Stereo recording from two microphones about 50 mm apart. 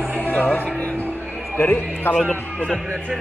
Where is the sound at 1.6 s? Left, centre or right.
Left.